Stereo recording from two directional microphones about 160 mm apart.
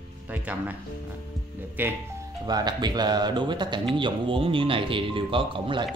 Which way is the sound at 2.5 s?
25° right (ahead or behind).